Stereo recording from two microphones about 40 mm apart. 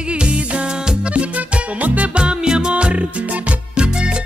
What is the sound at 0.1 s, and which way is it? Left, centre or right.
Music, right.